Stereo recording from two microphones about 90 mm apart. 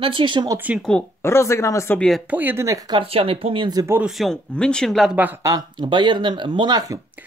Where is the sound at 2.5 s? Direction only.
40° right (ahead or behind).